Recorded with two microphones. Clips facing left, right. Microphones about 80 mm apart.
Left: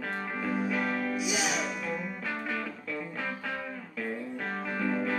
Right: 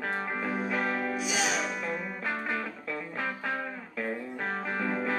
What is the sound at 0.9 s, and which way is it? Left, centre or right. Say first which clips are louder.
Music: even; right.